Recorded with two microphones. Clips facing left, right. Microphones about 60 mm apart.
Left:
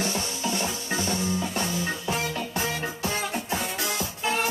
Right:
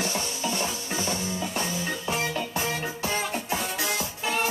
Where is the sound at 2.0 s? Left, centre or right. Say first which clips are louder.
Even; right.